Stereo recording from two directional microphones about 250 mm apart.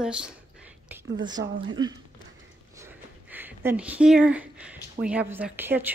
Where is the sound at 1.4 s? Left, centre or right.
Right.